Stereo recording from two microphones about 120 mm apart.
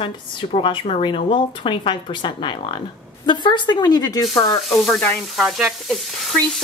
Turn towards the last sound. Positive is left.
turn(degrees=0)  # may be behind; listen again after turning